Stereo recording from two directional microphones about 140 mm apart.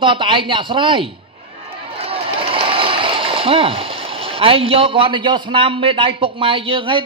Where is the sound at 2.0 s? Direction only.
40° right (ahead or behind).